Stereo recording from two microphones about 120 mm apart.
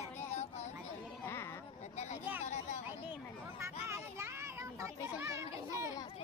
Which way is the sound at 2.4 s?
70° left (ahead or behind).